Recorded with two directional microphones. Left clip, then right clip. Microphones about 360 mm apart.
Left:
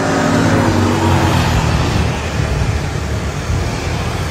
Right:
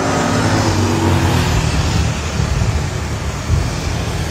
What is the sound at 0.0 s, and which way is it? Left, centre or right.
Vehicle, right.